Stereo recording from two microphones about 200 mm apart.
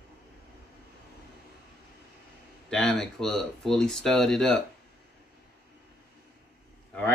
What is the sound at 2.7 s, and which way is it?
Speech, 5° left (ahead or behind).